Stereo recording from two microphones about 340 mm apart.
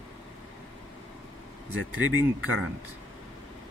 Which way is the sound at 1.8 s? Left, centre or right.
Right.